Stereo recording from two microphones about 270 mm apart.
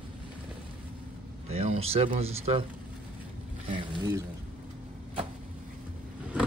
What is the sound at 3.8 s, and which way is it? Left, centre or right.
Speech, centre.